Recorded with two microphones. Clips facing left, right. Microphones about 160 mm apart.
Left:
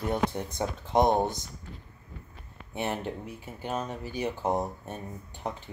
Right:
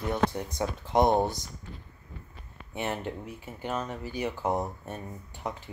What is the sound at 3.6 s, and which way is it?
Speech, 20° left (ahead or behind).